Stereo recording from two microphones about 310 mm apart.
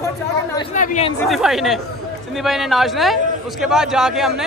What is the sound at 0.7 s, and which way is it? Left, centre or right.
Speech, left.